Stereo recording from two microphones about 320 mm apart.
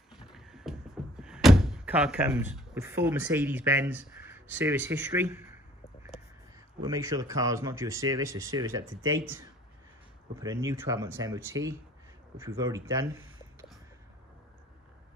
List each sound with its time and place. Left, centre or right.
0.3 s music: centre
1.2 s speech: centre
6.8 s speech: centre
10.6 s speech: centre